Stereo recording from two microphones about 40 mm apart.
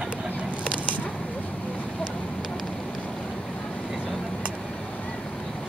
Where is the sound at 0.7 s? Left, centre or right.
Left.